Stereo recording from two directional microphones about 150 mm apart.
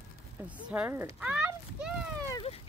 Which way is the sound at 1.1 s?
10° right (ahead or behind).